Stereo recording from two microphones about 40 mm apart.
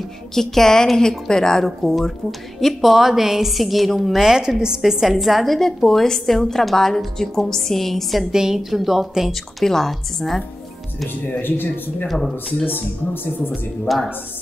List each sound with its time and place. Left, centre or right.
0.3 s a woman's voice: centre
2.6 s a woman's voice: centre
8.3 s a woman's voice: centre
11.1 s speech: left
12.1 s a woman's voice: centre
12.7 s speech: left
13.5 s a woman's voice: centre